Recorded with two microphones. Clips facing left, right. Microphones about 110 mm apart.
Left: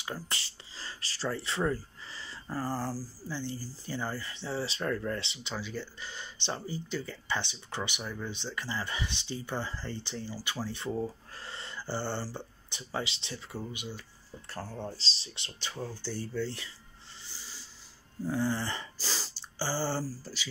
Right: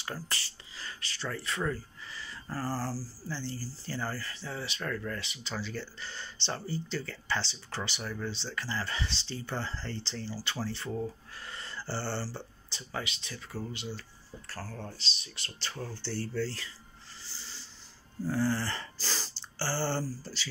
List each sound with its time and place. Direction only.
0.3 s gasp: 25° left (ahead or behind)
2.4 s speech: 20° left (ahead or behind)
5.6 s speech: 10° left (ahead or behind)
11.3 s speech: 25° left (ahead or behind)
15.0 s speech: 30° left (ahead or behind)
18.2 s a sound: 15° left (ahead or behind)